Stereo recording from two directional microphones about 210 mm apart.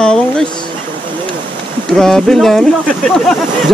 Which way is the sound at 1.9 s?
Centre (ahead or behind).